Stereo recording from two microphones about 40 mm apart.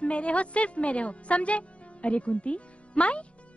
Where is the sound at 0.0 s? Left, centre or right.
Left.